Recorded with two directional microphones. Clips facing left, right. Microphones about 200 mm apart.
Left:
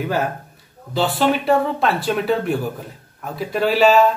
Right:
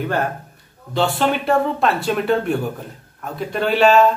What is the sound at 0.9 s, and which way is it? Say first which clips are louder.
Speech: even; centre (ahead or behind).